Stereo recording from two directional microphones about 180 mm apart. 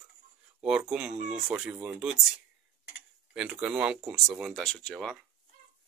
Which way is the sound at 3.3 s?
5° right (ahead or behind).